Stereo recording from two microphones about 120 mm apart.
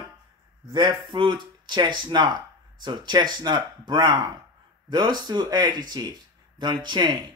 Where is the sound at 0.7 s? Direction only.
35° right (ahead or behind).